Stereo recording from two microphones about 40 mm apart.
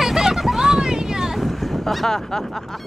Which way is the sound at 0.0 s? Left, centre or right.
Centre.